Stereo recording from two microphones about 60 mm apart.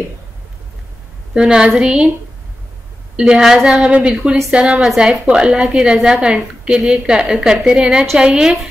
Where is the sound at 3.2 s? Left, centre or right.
Centre.